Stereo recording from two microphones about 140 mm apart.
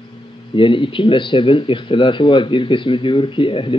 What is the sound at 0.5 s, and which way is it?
Speech, 35° left (ahead or behind).